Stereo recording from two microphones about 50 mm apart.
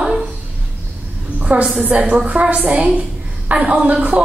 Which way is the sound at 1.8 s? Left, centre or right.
Right.